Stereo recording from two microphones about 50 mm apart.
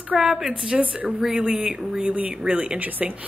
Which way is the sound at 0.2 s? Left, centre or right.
Centre.